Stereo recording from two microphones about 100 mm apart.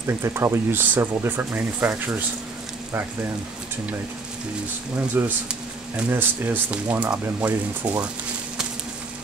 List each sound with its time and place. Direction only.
0.0 s speech: 30° right (ahead or behind)
5.2 s speech: 20° right (ahead or behind)